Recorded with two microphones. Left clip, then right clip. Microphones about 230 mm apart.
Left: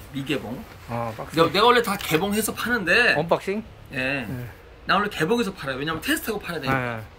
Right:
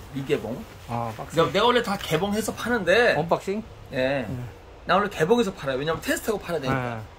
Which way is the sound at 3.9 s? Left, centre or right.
Right.